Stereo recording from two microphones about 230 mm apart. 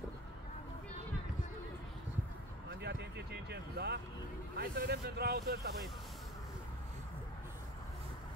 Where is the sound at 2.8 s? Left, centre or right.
Right.